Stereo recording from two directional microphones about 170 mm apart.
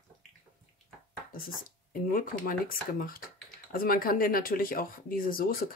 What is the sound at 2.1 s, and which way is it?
Speech, 55° left (ahead or behind).